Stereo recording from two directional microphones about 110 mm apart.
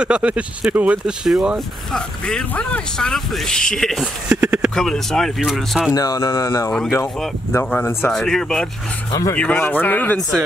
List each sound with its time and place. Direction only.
0.0 s speech: 10° right (ahead or behind)
1.9 s speech: 5° left (ahead or behind)
4.0 s speech: 10° right (ahead or behind)
4.7 s speech: 5° left (ahead or behind)
5.9 s speech: 30° left (ahead or behind)
7.7 s speech: 20° left (ahead or behind)
8.1 s speech: 5° left (ahead or behind)
9.3 s speech: 15° left (ahead or behind)